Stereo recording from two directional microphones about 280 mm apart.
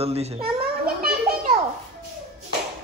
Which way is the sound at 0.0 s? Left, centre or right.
Right.